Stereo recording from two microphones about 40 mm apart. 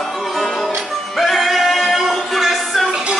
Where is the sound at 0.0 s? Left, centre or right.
Centre.